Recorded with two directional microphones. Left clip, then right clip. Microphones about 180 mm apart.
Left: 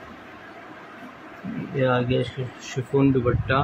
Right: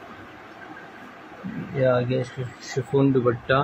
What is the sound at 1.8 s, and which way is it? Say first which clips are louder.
Speech: right 1 dB; 25° left (ahead or behind).